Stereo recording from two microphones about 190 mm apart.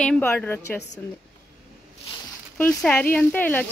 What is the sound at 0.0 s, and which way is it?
Speech, 5° left (ahead or behind).